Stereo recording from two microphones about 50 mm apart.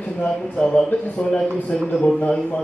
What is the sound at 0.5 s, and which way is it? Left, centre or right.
Speech, left.